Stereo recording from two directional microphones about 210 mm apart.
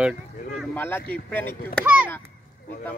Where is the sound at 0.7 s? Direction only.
10° left (ahead or behind).